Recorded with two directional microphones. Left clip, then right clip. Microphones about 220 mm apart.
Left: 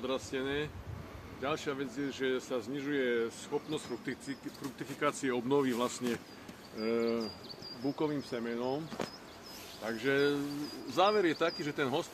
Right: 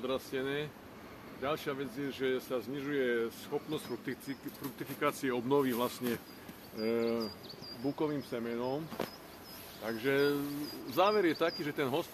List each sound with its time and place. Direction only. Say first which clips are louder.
0.0 s speech: even; 10° right (ahead or behind)